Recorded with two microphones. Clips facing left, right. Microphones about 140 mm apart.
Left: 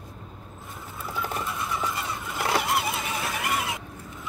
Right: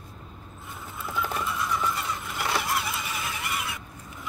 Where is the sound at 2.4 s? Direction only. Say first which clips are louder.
Left 4 dB; 45° left (ahead or behind).